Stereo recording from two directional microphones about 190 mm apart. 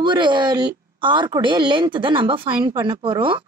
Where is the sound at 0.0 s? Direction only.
25° right (ahead or behind).